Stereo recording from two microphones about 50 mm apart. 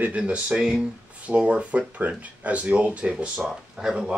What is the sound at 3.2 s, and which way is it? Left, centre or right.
Speech, centre.